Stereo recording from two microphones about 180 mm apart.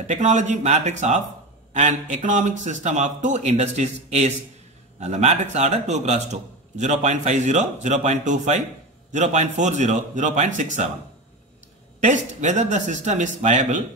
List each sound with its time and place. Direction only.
0.0 s a man's voice: 40° right (ahead or behind)
12.0 s a man's voice: 40° right (ahead or behind)